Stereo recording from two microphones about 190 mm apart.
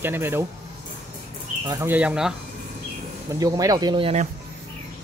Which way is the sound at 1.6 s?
15° right (ahead or behind).